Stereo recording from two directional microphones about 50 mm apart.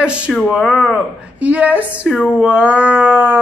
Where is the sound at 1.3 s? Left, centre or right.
Right.